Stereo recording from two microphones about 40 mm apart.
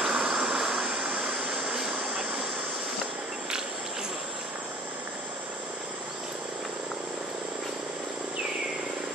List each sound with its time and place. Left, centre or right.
0.0 s vehicle: centre
0.8 s a sound: right
1.4 s vehicle: right